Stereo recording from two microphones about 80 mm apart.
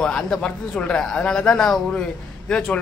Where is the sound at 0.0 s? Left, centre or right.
Centre.